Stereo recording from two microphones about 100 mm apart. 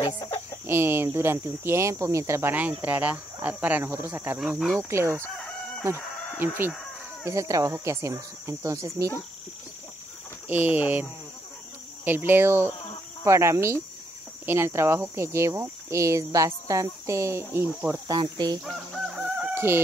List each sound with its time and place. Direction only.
0.7 s speech: 25° right (ahead or behind)
2.5 s speech: 15° right (ahead or behind)
5.2 s chicken: 10° left (ahead or behind)
6.3 s speech: 20° right (ahead or behind)
7.2 s speech: 30° right (ahead or behind)
10.5 s speech: 20° right (ahead or behind)
18.7 s chicken: 5° right (ahead or behind)
19.5 s chicken: 25° right (ahead or behind)